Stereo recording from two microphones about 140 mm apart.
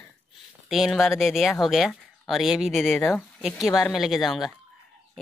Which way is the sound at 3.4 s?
5° right (ahead or behind).